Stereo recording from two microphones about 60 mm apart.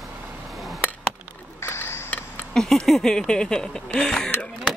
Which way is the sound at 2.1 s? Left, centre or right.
Left.